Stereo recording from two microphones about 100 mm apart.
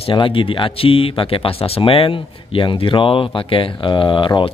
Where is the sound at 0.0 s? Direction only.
60° left (ahead or behind).